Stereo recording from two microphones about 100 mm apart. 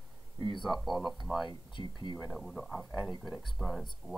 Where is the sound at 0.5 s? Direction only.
Centre (ahead or behind).